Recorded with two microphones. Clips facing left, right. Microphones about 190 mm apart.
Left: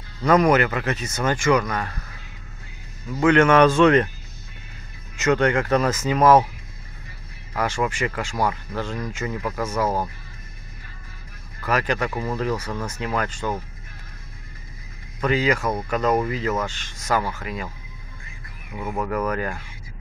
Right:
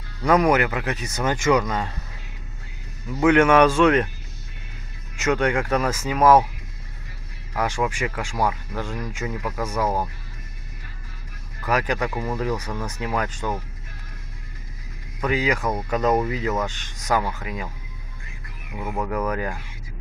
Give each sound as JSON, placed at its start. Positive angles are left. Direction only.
{"t": 0.2, "sound": "speech", "side_deg": -10}
{"t": 3.1, "sound": "speech", "side_deg": -15}
{"t": 5.1, "sound": "speech", "side_deg": -10}
{"t": 7.5, "sound": "speech", "side_deg": -15}
{"t": 11.6, "sound": "speech", "side_deg": -15}
{"t": 15.1, "sound": "speech", "side_deg": -15}
{"t": 18.7, "sound": "speech", "side_deg": -10}